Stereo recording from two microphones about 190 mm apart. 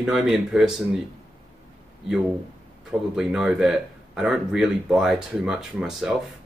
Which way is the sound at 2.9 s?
5° right (ahead or behind).